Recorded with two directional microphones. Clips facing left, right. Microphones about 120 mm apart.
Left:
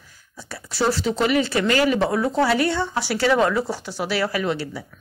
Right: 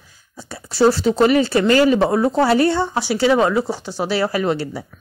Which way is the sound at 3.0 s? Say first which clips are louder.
Right 2 dB; 20° right (ahead or behind).